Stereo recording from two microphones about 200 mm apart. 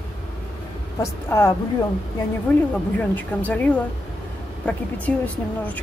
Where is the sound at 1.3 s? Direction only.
10° left (ahead or behind).